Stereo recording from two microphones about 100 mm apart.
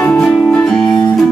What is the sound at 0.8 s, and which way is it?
Music, 50° left (ahead or behind).